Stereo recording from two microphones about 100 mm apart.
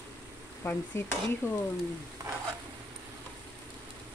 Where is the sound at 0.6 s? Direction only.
25° left (ahead or behind).